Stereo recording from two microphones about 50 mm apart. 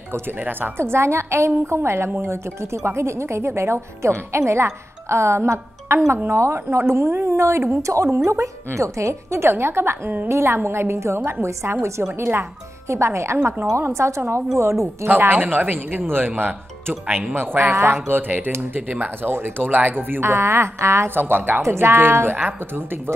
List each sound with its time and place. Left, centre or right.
0.4 s speech: right
0.7 s speech: right
13.7 s speech: right
15.0 s speech: right
18.6 s speech: right
21.2 s speech: right
21.6 s speech: right
21.9 s speech: right